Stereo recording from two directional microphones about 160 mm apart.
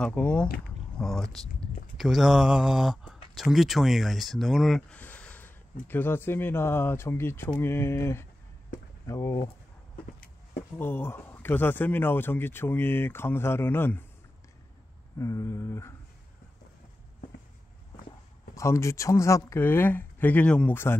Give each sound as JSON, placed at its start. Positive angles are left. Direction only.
{"t": 0.0, "sound": "speech", "side_deg": 10}
{"t": 10.8, "sound": "speech", "side_deg": 15}
{"t": 15.1, "sound": "speech", "side_deg": 20}
{"t": 18.5, "sound": "speech", "side_deg": 20}